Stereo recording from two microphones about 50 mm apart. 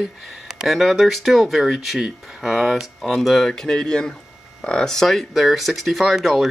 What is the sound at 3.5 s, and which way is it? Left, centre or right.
Speech, centre.